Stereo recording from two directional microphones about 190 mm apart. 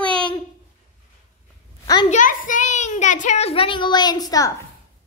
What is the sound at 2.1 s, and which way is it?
Speech, 45° left (ahead or behind).